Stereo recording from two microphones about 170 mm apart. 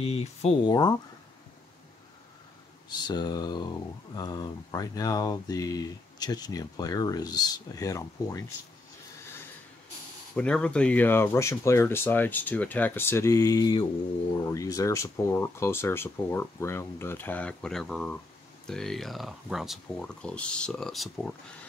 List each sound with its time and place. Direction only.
0.0 s speech: 40° left (ahead or behind)
0.7 s speech: 25° left (ahead or behind)
2.9 s speech: 25° left (ahead or behind)
10.3 s speech: 5° left (ahead or behind)